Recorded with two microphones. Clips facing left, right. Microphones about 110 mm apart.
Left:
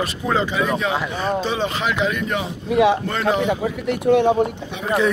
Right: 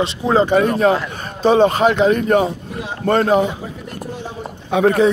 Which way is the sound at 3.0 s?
45° right (ahead or behind).